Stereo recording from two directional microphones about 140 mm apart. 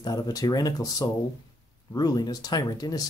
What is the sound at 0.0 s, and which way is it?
Speech, 25° left (ahead or behind).